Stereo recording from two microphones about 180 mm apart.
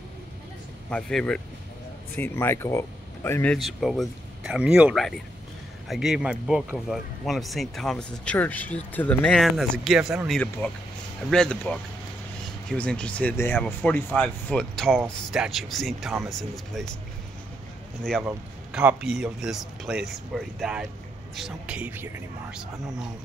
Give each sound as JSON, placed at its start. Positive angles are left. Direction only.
{"t": 0.8, "sound": "speech", "side_deg": 5}
{"t": 3.5, "sound": "speech", "side_deg": 0}
{"t": 18.2, "sound": "speech", "side_deg": -10}